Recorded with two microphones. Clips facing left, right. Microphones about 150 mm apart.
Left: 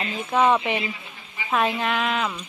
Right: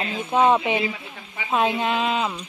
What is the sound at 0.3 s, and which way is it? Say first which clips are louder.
Speech: right 2 dB; 25° right (ahead or behind).